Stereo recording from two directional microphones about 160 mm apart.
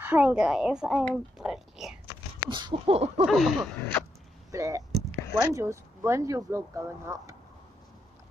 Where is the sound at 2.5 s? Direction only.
30° right (ahead or behind).